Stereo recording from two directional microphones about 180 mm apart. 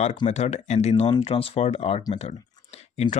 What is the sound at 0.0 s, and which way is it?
Speech, 35° left (ahead or behind).